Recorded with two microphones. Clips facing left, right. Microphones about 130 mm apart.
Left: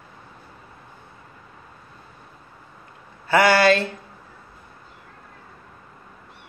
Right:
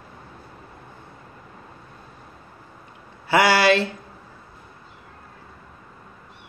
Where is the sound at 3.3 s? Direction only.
20° right (ahead or behind).